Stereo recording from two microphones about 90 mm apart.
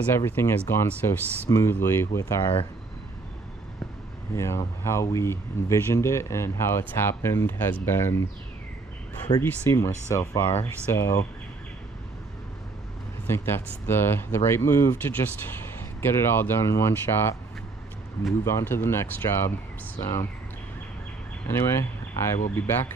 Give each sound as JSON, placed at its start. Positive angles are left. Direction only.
{"t": 0.1, "sound": "speech", "side_deg": 30}
{"t": 4.4, "sound": "speech", "side_deg": 30}
{"t": 9.3, "sound": "speech", "side_deg": 75}
{"t": 9.7, "sound": "speech", "side_deg": 30}
{"t": 13.3, "sound": "speech", "side_deg": 25}
{"t": 16.0, "sound": "speech", "side_deg": 25}
{"t": 18.4, "sound": "speech", "side_deg": 30}
{"t": 20.0, "sound": "speech", "side_deg": 45}
{"t": 21.5, "sound": "speech", "side_deg": 30}